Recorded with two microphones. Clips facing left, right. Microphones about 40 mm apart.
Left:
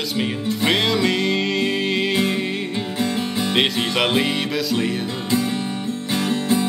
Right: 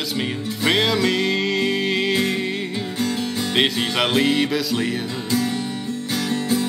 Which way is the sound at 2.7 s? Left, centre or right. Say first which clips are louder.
Left 1 dB; left.